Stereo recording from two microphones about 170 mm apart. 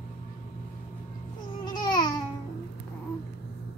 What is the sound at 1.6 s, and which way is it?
Babbling, 25° left (ahead or behind).